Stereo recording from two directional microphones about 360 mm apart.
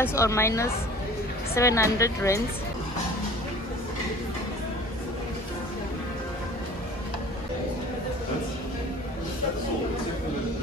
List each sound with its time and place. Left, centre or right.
0.0 s speech: centre